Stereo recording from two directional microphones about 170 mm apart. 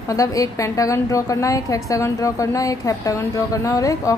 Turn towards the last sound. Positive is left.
turn(degrees=20)  # may be behind; listen again after turning